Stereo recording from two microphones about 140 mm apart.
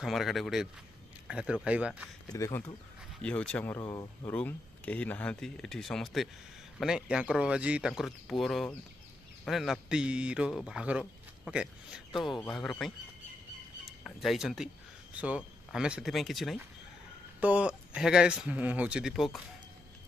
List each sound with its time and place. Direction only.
0.0 s a man's voice: centre (ahead or behind)
2.2 s speech: 20° left (ahead or behind)
3.2 s speech: 5° left (ahead or behind)
3.8 s speech: 25° left (ahead or behind)
4.3 s a man's voice: 10° left (ahead or behind)
17.4 s speech: 10° right (ahead or behind)